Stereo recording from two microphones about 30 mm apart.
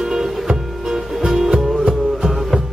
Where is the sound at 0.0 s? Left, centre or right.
Centre.